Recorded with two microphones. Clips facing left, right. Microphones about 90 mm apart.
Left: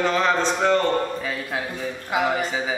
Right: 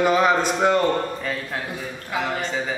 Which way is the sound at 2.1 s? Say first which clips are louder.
Left 3 dB; 10° left (ahead or behind).